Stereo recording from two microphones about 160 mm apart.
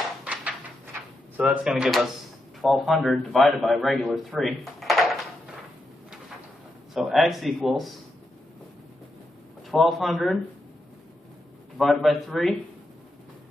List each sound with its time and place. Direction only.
0.2 s a sound: 5° right (ahead or behind)
1.3 s a man's voice: 10° right (ahead or behind)
6.9 s a man's voice: centre (ahead or behind)
9.7 s a man's voice: centre (ahead or behind)
11.8 s a man's voice: centre (ahead or behind)